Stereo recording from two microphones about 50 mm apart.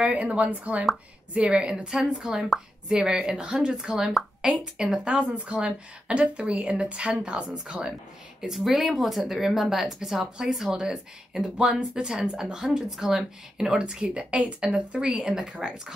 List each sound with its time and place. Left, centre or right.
0.0 s a woman's voice: right
8.4 s speech: centre